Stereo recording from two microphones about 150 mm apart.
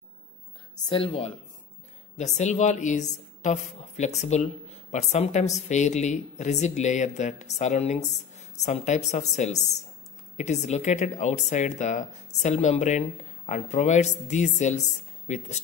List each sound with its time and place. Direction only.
0.8 s speech: 40° left (ahead or behind)
2.1 s a woman's voice: 50° left (ahead or behind)